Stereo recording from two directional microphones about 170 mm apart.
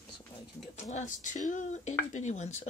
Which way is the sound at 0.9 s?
45° left (ahead or behind).